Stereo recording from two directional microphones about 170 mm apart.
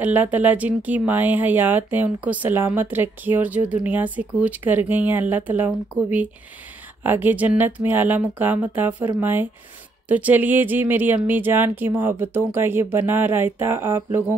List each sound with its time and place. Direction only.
0.0 s speech: 10° right (ahead or behind)